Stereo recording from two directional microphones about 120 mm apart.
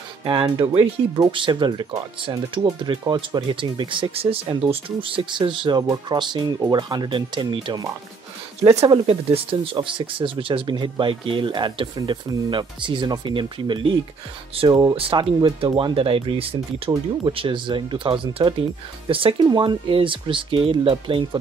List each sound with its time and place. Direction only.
0.2 s speech: 45° right (ahead or behind)
8.8 s speech: 45° right (ahead or behind)
14.7 s speech: 30° right (ahead or behind)
15.0 s speech: 50° right (ahead or behind)